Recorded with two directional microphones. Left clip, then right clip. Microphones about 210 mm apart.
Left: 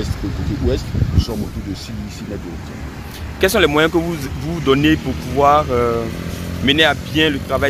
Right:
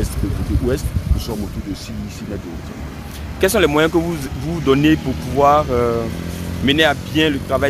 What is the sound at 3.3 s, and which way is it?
Speech, 5° right (ahead or behind).